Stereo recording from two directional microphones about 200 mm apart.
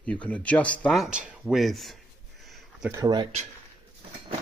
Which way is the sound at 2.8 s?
15° right (ahead or behind).